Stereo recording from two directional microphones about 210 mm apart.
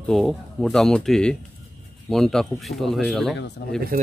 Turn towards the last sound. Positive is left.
turn(degrees=-40)  # may be behind; listen again after turning